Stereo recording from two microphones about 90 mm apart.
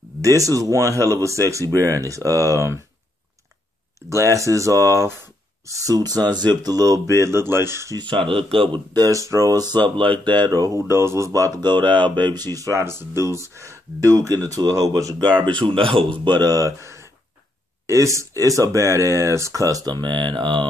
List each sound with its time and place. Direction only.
0.2 s speech: 40° right (ahead or behind)
4.1 s speech: 35° right (ahead or behind)
8.0 s speech: 70° right (ahead or behind)
8.9 s speech: 40° right (ahead or behind); by 12.3 s 65° right (ahead or behind)
12.5 s speech: 35° right (ahead or behind)
15.6 s speech: 85° right; by 20.6 s 65° right (ahead or behind)